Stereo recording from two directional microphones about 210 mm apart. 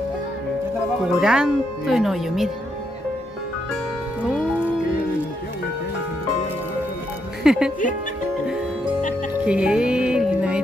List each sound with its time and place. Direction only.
1.1 s speech: 5° right (ahead or behind)
7.4 s speech: 5° right (ahead or behind)
9.4 s music: 5° right (ahead or behind)